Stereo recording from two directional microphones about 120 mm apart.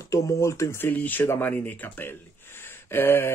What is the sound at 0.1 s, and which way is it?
Speech, 25° left (ahead or behind).